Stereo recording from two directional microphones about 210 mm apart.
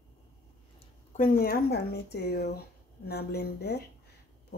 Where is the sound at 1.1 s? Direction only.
40° left (ahead or behind).